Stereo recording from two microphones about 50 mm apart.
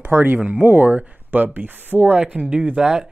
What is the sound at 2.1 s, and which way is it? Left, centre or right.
Speech, right.